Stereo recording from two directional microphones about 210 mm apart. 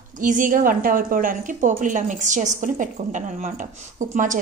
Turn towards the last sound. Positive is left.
turn(degrees=-35)  # may be behind; listen again after turning